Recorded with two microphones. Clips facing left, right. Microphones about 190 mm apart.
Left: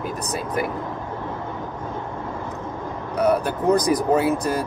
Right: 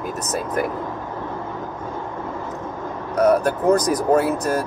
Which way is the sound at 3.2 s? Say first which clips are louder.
Right 3 dB; 45° right (ahead or behind).